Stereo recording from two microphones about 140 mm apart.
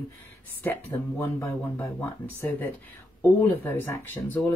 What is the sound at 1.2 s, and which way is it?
Speech, 15° left (ahead or behind).